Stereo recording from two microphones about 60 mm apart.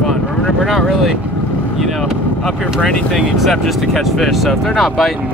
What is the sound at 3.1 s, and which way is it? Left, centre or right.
Speech, centre.